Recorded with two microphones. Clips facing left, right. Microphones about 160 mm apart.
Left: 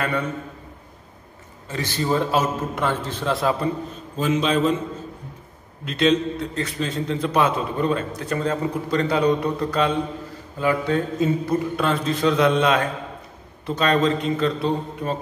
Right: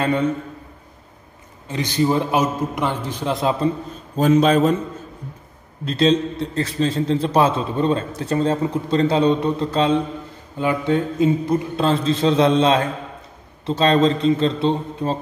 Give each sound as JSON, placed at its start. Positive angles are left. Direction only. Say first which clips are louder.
{"t": 0.0, "sound": "a man's voice", "louder": "right 5 dB", "side_deg": -20}
{"t": 1.7, "sound": "a man's voice", "louder": "right 4 dB", "side_deg": -20}
{"t": 4.2, "sound": "a man's voice", "louder": "right 5 dB", "side_deg": -45}
{"t": 5.9, "sound": "a man's voice", "louder": "right 2 dB", "side_deg": -35}